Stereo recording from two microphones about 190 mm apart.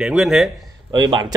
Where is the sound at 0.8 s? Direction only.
25° right (ahead or behind).